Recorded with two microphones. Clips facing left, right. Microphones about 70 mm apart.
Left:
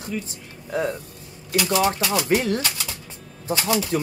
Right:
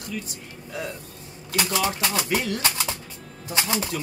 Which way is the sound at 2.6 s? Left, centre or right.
Right.